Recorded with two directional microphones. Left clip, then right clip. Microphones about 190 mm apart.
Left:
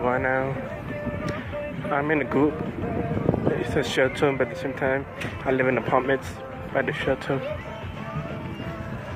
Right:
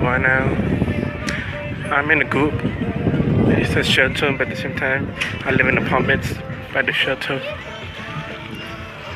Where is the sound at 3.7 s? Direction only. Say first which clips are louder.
Right 6 dB; 15° left (ahead or behind).